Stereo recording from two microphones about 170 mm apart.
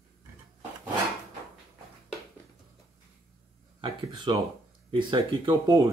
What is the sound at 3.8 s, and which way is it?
Speech, 30° right (ahead or behind).